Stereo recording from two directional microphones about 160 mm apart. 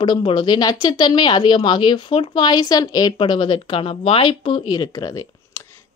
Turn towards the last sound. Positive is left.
turn(degrees=20)  # may be behind; listen again after turning